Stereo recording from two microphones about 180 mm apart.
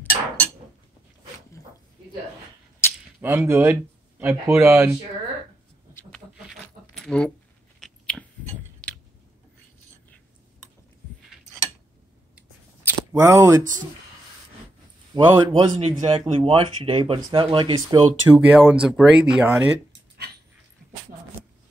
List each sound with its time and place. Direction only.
0.1 s a sound: 35° right (ahead or behind)
2.8 s cap gun: 15° left (ahead or behind)
3.2 s a man's voice: 10° right (ahead or behind)
6.1 s keys jangling: centre (ahead or behind)
7.8 s chewing: 5° left (ahead or behind)
13.1 s speech: 15° right (ahead or behind)
15.1 s speech: 25° right (ahead or behind)
18.5 s speech: 5° right (ahead or behind)